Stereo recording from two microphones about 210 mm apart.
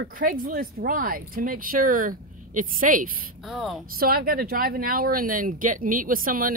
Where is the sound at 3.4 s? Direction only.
Centre (ahead or behind).